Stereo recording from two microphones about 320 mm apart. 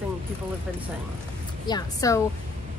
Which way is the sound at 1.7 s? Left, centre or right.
Centre.